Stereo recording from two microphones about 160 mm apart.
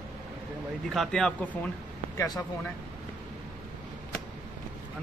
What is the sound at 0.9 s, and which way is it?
Speech, centre (ahead or behind).